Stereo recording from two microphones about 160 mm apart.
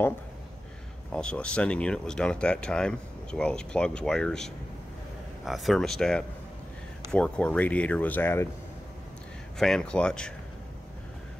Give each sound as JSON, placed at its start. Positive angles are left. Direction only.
{"t": 1.1, "sound": "speech", "side_deg": 5}
{"t": 9.6, "sound": "speech", "side_deg": 5}